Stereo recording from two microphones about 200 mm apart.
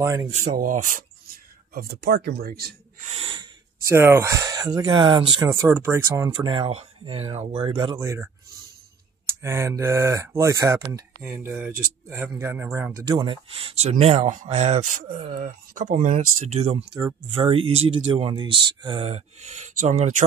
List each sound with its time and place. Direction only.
0.0 s speech: 15° right (ahead or behind)
0.3 s speech: 35° right (ahead or behind)
3.1 s speech: 30° right (ahead or behind)
3.8 s speech: 10° right (ahead or behind)
9.4 s speech: 15° right (ahead or behind)
13.0 s speech: 25° right (ahead or behind)